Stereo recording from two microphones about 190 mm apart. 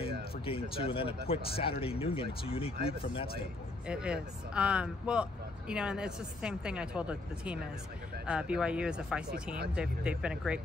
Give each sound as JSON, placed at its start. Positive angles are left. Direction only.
{"t": 0.5, "sound": "speech", "side_deg": 30}
{"t": 3.8, "sound": "speech", "side_deg": -5}